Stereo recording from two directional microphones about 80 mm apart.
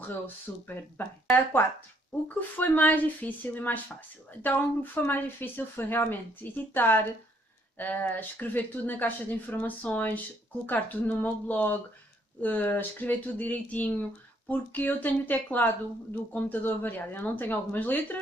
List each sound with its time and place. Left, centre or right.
0.5 s a woman's voice: left